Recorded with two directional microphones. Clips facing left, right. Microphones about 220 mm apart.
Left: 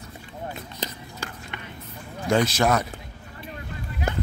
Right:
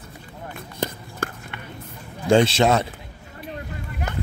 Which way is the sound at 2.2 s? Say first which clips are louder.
Right 4 dB; 30° right (ahead or behind).